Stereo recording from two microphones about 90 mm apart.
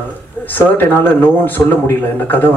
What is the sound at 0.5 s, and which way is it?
A man's voice, 20° left (ahead or behind).